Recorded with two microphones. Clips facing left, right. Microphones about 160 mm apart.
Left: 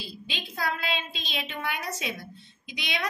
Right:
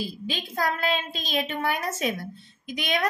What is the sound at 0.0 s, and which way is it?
A woman's voice, 45° right (ahead or behind).